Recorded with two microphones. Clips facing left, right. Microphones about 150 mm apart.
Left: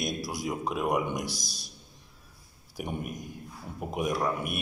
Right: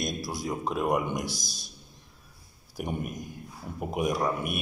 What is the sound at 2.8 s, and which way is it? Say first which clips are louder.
A man's voice: right 2 dB; centre (ahead or behind).